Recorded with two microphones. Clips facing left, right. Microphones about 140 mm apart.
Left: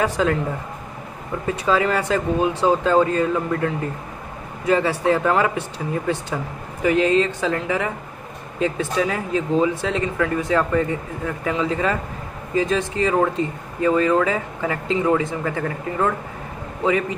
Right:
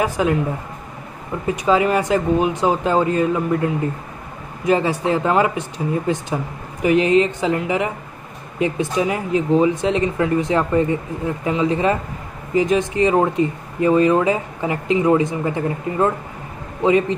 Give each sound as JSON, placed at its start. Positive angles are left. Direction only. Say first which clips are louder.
{"t": 0.0, "sound": "a man's voice", "louder": "right 1 dB", "side_deg": -15}
{"t": 1.5, "sound": "speech", "louder": "right 3 dB", "side_deg": -15}